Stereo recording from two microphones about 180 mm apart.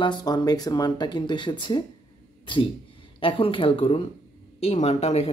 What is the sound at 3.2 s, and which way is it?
Speech, 30° left (ahead or behind).